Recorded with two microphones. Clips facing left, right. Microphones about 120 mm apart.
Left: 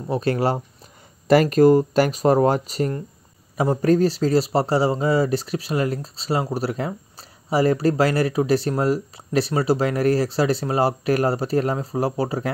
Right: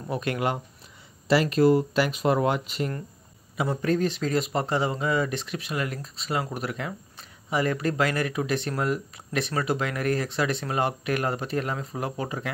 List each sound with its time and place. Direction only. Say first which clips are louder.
0.1 s speech: left 6 dB; 35° left (ahead or behind)
1.2 s speech: left 6 dB; 50° left (ahead or behind)